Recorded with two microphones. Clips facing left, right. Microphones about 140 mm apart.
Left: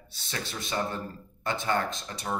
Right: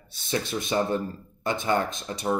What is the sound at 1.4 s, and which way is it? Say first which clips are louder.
Speech: right 3 dB; 15° right (ahead or behind).